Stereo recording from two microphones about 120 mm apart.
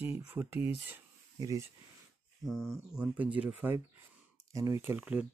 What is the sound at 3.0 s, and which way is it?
Speech, 10° right (ahead or behind).